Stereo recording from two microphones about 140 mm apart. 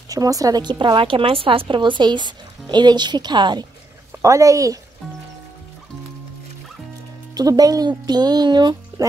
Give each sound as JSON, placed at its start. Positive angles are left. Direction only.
{"t": 0.1, "sound": "speech", "side_deg": -25}
{"t": 4.1, "sound": "a woman's voice", "side_deg": -20}
{"t": 7.3, "sound": "speech", "side_deg": -25}